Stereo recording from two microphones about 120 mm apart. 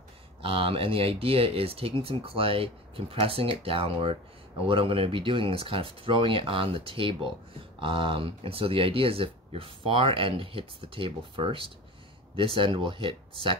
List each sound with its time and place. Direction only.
0.4 s speech: 50° right (ahead or behind)